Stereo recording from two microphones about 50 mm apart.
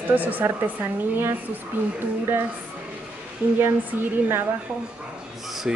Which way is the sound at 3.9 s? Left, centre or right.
Right.